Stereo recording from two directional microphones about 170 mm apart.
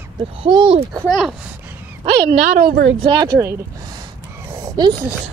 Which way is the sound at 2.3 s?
45° right (ahead or behind).